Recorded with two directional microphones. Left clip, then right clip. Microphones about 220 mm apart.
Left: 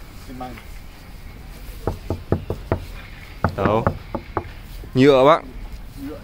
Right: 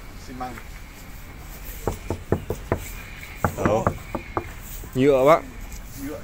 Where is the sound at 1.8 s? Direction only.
45° left (ahead or behind).